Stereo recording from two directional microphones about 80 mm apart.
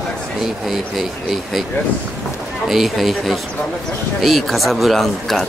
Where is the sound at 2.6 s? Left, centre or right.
Centre.